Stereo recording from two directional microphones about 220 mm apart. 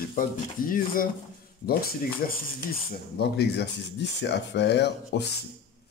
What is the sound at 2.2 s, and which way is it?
Speech, 40° left (ahead or behind).